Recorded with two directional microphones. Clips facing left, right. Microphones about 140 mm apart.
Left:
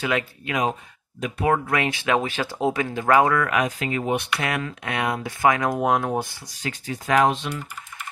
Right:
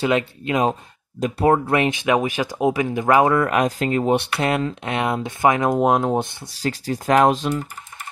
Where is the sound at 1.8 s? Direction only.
20° right (ahead or behind).